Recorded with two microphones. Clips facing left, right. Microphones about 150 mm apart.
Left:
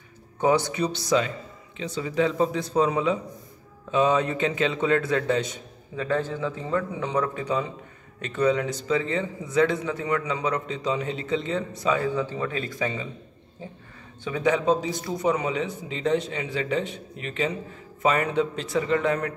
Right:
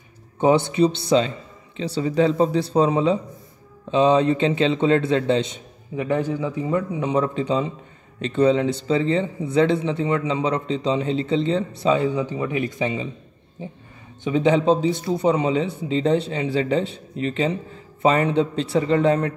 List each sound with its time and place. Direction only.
0.4 s speech: 25° right (ahead or behind)